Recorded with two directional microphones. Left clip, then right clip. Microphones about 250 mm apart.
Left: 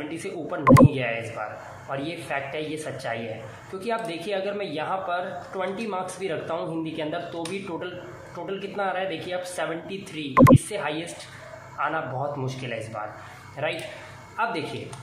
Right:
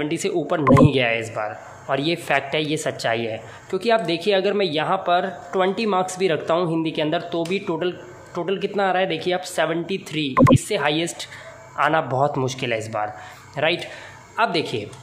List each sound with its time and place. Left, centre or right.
0.1 s speech: right
10.3 s speech: centre
10.7 s a woman's voice: right